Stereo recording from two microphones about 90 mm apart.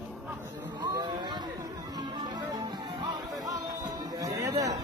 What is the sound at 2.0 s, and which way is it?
Music, 55° right (ahead or behind).